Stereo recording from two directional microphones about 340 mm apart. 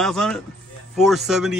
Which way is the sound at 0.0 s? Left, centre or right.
Centre.